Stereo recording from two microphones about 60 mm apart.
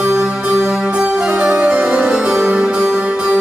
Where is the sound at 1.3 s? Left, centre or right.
Right.